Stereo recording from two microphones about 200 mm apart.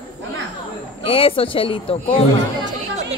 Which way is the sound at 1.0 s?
25° left (ahead or behind).